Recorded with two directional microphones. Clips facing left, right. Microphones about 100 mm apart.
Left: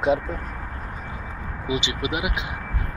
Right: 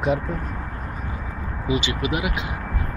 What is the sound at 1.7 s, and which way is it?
Speech, 15° left (ahead or behind).